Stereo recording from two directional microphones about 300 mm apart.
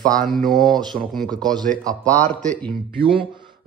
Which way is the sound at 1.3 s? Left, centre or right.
Centre.